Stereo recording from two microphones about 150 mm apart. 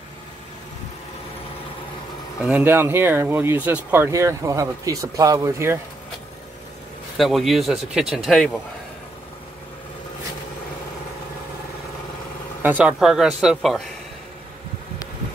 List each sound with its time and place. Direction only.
2.4 s speech: 10° right (ahead or behind)
7.2 s speech: centre (ahead or behind)
12.6 s speech: 10° right (ahead or behind)